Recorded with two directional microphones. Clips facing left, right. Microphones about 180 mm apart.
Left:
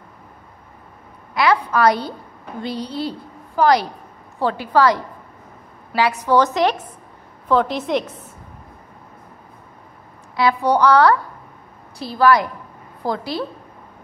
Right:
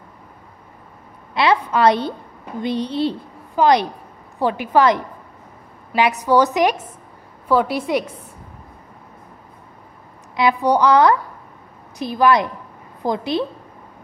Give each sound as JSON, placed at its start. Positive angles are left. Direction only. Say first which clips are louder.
{"t": 1.3, "sound": "a woman's voice", "louder": "even", "side_deg": -25}
{"t": 6.2, "sound": "a woman's voice", "louder": "right 1 dB", "side_deg": -15}
{"t": 10.3, "sound": "a woman's voice", "louder": "right 1 dB", "side_deg": -20}